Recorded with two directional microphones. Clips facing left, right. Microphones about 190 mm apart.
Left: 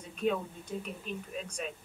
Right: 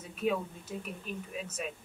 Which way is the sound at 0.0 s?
5° right (ahead or behind).